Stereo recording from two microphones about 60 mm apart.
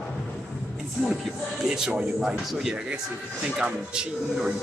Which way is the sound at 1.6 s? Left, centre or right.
Centre.